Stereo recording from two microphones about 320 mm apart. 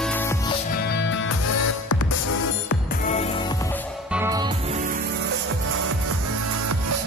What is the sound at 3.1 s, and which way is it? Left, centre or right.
Music, centre.